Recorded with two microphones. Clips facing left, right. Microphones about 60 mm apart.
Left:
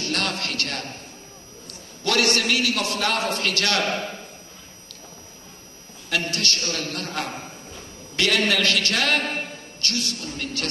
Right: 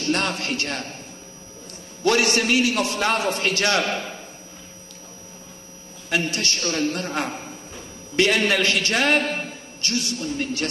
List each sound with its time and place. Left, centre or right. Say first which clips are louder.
0.1 s a man's voice: right 5 dB; right
2.0 s a man's voice: right 2 dB; right
6.0 s a man's voice: right 1 dB; right